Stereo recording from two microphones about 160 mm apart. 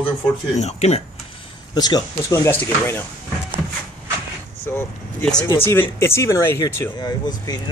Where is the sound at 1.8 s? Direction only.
25° left (ahead or behind).